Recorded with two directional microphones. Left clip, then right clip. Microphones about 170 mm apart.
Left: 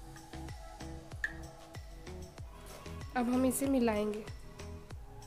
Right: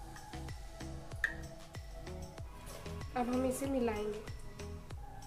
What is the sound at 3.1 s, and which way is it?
Speech, 65° left (ahead or behind).